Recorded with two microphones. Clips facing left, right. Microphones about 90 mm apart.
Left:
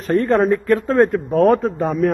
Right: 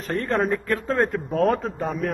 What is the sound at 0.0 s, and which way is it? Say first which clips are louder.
A man's voice: left 8 dB; 10° left (ahead or behind).